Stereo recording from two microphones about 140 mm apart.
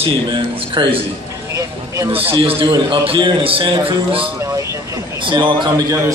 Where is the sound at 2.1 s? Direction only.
40° right (ahead or behind).